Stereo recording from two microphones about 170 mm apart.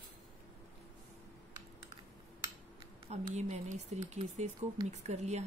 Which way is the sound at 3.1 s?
40° right (ahead or behind).